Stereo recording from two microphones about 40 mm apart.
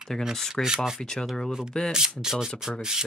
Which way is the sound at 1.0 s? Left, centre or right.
Centre.